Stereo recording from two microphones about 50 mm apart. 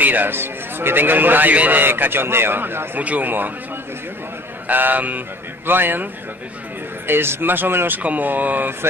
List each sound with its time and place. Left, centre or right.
0.0 s a man's voice: right
0.3 s a man's voice: right
1.5 s a man's voice: right
1.8 s a man's voice: right
3.0 s a man's voice: right
4.6 s a man's voice: right
7.1 s a man's voice: right
8.0 s a man's voice: right